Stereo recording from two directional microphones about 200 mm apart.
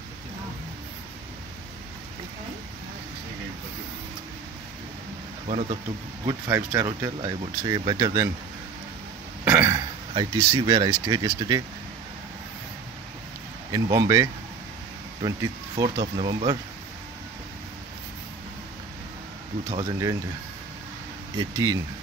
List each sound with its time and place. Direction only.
5.5 s speech: 30° right (ahead or behind)
6.2 s speech: 15° right (ahead or behind)
9.4 s speech: 10° right (ahead or behind)
13.7 s speech: 20° right (ahead or behind)
19.7 s speech: 20° right (ahead or behind)
21.4 s speech: 20° right (ahead or behind)